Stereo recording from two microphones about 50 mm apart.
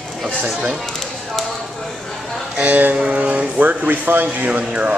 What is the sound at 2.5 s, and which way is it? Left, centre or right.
Speech, right.